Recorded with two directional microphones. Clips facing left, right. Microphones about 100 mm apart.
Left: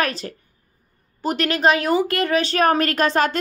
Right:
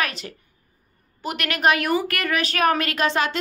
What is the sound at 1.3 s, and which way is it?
A woman's voice, 30° left (ahead or behind).